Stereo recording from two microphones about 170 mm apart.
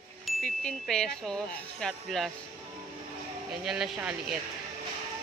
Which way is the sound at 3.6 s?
Centre (ahead or behind).